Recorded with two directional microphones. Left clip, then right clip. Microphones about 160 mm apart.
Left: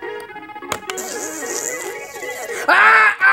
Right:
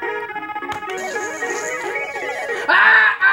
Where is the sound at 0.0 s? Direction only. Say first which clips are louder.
Right 5 dB; 30° right (ahead or behind).